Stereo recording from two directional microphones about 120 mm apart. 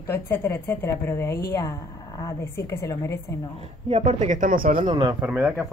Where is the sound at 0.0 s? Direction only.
20° left (ahead or behind).